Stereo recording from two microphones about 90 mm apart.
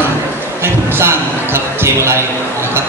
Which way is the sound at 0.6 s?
25° right (ahead or behind).